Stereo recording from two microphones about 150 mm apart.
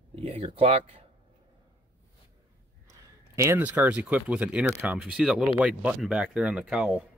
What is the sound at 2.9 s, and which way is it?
Speech, 20° right (ahead or behind).